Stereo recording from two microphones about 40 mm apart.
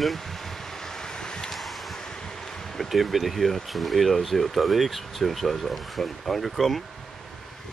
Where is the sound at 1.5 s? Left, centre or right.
Centre.